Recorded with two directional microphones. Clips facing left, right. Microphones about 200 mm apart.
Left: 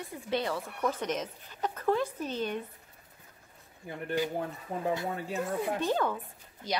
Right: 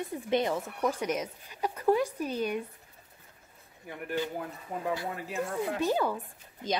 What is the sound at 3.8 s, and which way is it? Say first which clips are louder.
Speech: left 2 dB; 30° left (ahead or behind).